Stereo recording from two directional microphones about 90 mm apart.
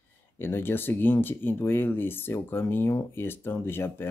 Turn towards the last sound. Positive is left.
turn(degrees=25)  # may be behind; listen again after turning